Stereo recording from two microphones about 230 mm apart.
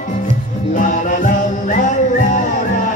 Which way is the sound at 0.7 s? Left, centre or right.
Left.